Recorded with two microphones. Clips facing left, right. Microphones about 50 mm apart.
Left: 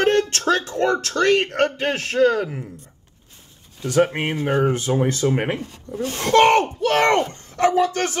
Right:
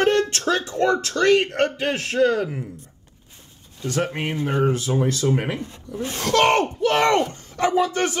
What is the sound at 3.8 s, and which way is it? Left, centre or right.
Speech, left.